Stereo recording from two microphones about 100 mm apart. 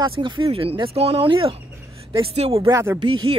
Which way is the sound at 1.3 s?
60° right (ahead or behind).